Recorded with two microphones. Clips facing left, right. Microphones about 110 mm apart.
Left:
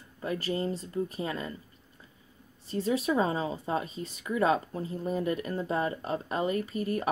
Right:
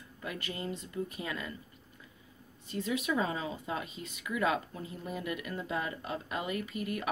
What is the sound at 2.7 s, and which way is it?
Speech, 35° left (ahead or behind).